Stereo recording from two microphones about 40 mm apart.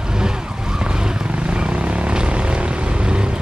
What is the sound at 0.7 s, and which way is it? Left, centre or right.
Vehicle, right.